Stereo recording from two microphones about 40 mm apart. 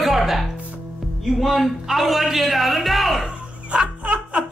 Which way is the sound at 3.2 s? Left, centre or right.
Right.